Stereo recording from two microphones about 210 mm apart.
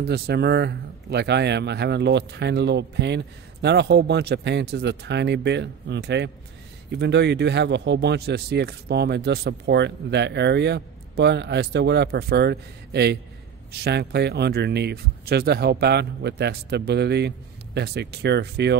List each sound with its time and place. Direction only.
0.0 s speech: 50° right (ahead or behind)